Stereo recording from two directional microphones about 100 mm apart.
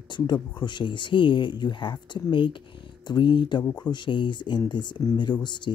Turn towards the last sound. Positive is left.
turn(degrees=50)  # may be behind; listen again after turning